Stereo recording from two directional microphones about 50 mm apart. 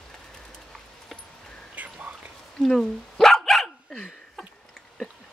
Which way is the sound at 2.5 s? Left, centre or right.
Centre.